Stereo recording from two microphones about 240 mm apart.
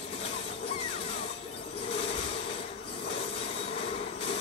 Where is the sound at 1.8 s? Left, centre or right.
Left.